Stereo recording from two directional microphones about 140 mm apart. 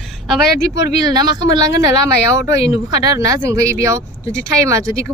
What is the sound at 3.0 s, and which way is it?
Speech, 25° right (ahead or behind).